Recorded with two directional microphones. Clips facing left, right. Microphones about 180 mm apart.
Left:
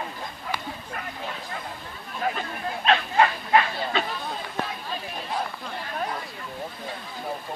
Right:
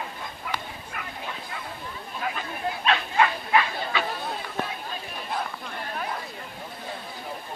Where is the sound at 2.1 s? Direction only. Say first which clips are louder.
Left 4 dB; 35° left (ahead or behind).